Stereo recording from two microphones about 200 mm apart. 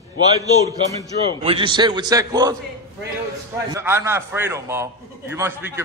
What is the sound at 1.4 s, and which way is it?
A man's voice, 25° right (ahead or behind).